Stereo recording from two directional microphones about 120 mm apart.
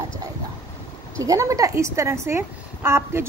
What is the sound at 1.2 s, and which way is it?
A woman's voice, 30° right (ahead or behind).